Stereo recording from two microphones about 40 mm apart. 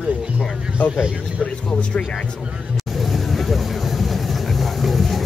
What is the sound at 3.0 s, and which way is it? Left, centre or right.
Vehicle, centre.